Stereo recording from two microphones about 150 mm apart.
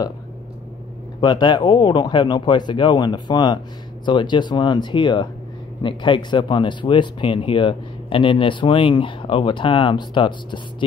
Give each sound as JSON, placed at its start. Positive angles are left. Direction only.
{"t": 1.2, "sound": "speech", "side_deg": 30}